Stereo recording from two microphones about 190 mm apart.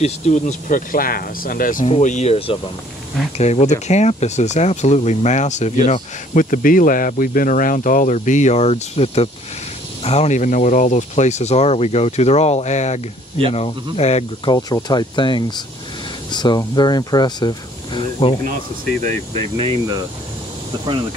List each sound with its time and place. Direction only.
0.0 s speech: 40° left (ahead or behind)
14.5 s speech: 20° left (ahead or behind)